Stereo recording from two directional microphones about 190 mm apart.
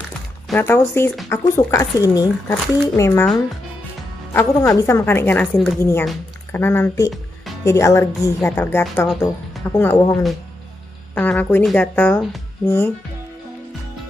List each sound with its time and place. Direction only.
0.5 s a woman's voice: 10° left (ahead or behind)
4.3 s a woman's voice: 15° left (ahead or behind)
11.1 s a woman's voice: 10° left (ahead or behind)